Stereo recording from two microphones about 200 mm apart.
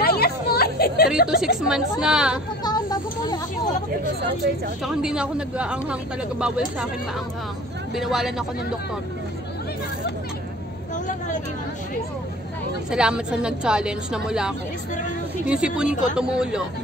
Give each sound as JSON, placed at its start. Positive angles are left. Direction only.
{"t": 0.0, "sound": "a sound", "side_deg": 50}
{"t": 1.2, "sound": "a woman's voice", "side_deg": -5}
{"t": 2.6, "sound": "vehicle", "side_deg": 20}
{"t": 4.8, "sound": "a woman's voice", "side_deg": -5}
{"t": 7.9, "sound": "a woman's voice", "side_deg": 0}
{"t": 12.9, "sound": "a woman's voice", "side_deg": -5}